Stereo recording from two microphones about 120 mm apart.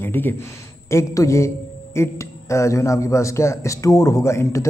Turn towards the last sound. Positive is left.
turn(degrees=25)  # may be behind; listen again after turning